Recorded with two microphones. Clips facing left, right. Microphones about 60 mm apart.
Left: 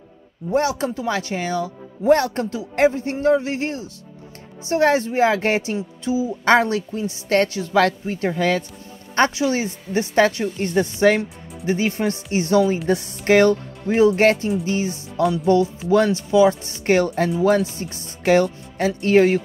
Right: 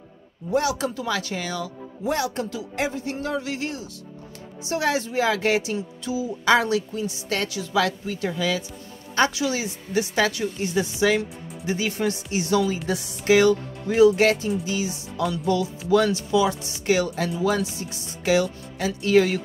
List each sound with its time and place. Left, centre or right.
0.5 s speech: left
2.1 s speech: left
6.4 s speech: left
9.1 s speech: left